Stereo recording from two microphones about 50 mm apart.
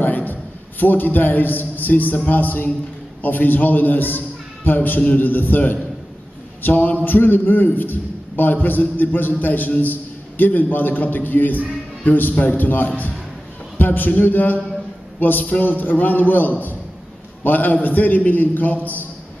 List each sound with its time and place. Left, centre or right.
0.0 s a man's voice: left